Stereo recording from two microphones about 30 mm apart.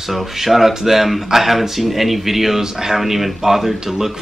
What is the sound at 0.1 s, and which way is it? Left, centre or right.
Speech, centre.